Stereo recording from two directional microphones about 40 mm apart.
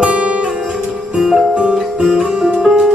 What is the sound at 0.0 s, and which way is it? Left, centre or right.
Guitar, right.